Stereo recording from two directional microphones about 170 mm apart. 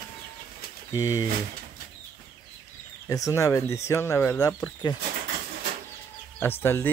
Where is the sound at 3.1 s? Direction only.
20° left (ahead or behind).